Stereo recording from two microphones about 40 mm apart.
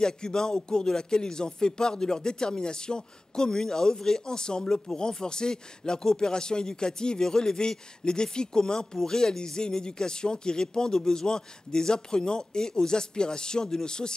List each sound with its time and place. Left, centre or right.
0.0 s speech: centre